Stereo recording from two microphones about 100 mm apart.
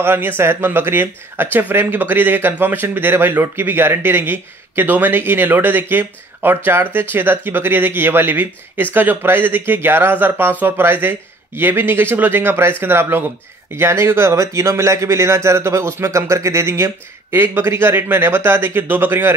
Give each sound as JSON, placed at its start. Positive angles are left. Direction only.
{"t": 0.0, "sound": "speech", "side_deg": -20}